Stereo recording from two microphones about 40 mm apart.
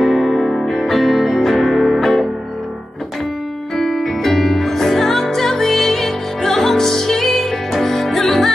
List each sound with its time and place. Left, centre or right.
0.0 s music: centre
3.7 s music: centre